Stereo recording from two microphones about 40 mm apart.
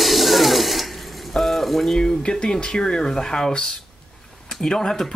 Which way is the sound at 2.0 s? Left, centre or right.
Centre.